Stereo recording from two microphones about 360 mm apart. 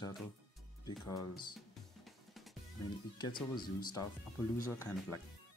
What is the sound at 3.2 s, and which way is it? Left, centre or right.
Speech, centre.